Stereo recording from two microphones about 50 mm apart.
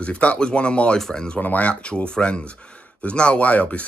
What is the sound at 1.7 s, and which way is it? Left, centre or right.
Speech, centre.